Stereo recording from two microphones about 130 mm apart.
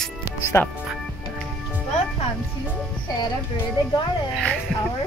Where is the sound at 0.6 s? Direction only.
15° left (ahead or behind).